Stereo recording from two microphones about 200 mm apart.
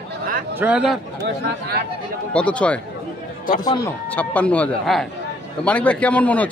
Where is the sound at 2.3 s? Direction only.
5° left (ahead or behind).